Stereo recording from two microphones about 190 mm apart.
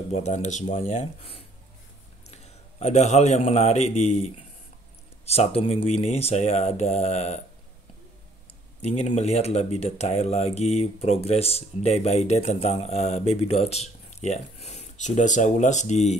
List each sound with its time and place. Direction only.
0.1 s a man's voice: 35° left (ahead or behind)
8.8 s speech: 35° left (ahead or behind)